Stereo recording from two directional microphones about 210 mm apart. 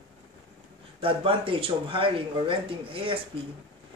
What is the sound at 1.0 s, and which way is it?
Speech, 25° right (ahead or behind).